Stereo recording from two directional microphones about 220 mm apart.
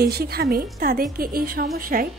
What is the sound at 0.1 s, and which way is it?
A woman's voice, 45° right (ahead or behind).